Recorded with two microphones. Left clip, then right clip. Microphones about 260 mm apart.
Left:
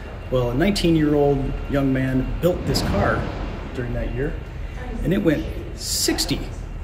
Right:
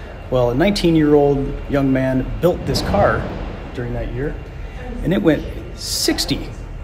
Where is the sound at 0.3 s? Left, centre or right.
Centre.